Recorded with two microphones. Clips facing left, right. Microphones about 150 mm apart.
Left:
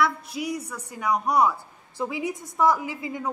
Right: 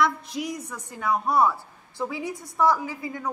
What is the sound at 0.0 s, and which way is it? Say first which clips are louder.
A woman's voice: even; 10° left (ahead or behind).